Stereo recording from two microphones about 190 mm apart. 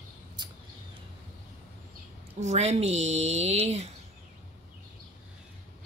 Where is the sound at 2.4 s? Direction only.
35° right (ahead or behind).